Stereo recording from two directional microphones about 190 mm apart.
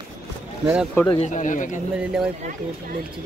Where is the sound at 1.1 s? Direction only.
35° left (ahead or behind).